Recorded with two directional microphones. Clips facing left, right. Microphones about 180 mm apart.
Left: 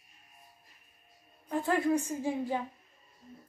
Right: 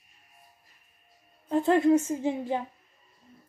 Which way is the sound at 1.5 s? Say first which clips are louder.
Right 7 dB; 20° right (ahead or behind).